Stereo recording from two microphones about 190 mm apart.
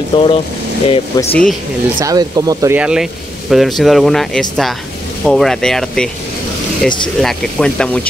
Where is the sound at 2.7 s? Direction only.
5° right (ahead or behind).